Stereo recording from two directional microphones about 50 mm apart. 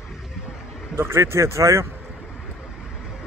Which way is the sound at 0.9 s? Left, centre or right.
Right.